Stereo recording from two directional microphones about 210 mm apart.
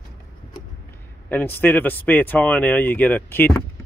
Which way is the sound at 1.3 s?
10° left (ahead or behind).